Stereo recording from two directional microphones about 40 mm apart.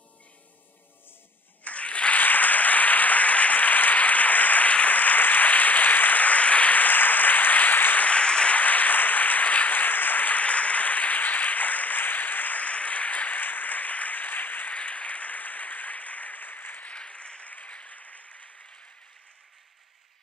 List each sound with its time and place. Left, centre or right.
1.6 s applause: left
8.0 s applause: left
8.5 s a sound: left
14.7 s applause: left
16.8 s a sound: left
17.5 s applause: left